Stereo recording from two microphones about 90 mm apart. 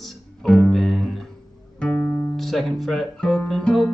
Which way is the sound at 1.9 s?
25° left (ahead or behind).